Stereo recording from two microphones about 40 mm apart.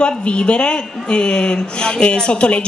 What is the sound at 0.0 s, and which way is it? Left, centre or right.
A woman's voice, left.